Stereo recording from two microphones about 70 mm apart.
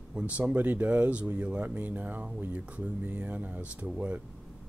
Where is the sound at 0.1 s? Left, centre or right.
Centre.